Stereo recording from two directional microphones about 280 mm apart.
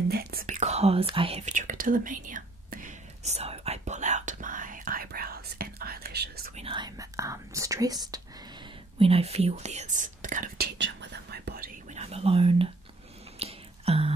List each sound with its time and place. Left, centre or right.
0.1 s whispering: right
6.5 s whispering: centre